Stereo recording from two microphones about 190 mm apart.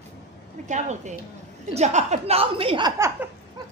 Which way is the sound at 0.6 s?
40° right (ahead or behind).